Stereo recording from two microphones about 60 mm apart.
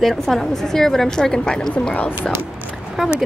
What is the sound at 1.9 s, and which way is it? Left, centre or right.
Speech, left.